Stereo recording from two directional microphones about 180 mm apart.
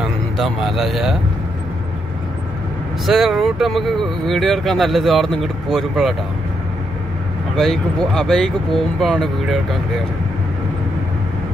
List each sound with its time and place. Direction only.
0.4 s speech: centre (ahead or behind)
3.1 s speech: centre (ahead or behind)
7.5 s speech: centre (ahead or behind)